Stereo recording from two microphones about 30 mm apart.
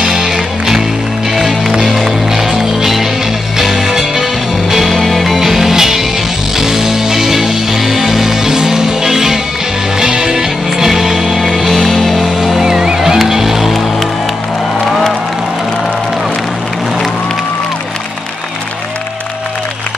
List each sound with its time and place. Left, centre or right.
0.0 s music: centre
1.7 s music: right
2.0 s music: centre
5.0 s music: centre